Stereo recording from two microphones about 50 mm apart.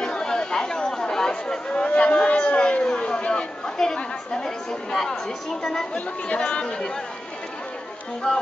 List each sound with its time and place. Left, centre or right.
0.0 s chatter: centre
2.0 s a sound: left
5.9 s speech: left
8.3 s music: centre